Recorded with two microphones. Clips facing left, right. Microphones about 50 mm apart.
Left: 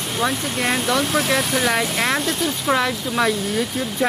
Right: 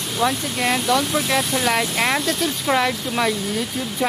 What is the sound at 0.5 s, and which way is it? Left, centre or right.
Speech, centre.